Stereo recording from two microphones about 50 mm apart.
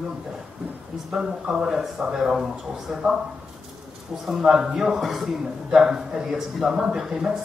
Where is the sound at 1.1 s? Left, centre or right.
Centre.